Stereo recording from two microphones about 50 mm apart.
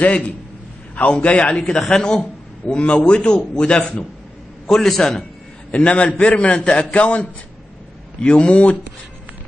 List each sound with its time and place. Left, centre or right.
0.0 s a man's voice: left
1.8 s speech: centre
2.6 s a man's voice: left
4.6 s a man's voice: centre
5.7 s a man's voice: left